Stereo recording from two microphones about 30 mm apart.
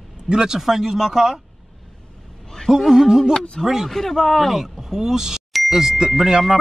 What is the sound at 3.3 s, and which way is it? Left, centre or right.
Speech, left.